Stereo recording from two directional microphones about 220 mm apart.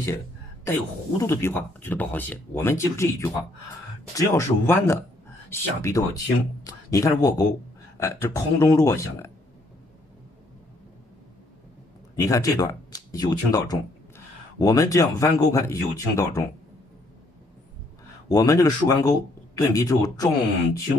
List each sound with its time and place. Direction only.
0.7 s speech: 15° left (ahead or behind)
12.2 s speech: 15° left (ahead or behind)
18.3 s speech: 15° left (ahead or behind)